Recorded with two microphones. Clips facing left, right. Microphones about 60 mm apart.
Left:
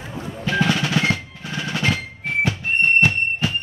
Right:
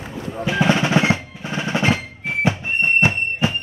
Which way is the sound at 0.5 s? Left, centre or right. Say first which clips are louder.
Right 3 dB; centre.